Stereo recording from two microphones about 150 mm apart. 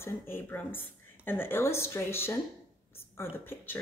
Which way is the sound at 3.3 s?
15° left (ahead or behind).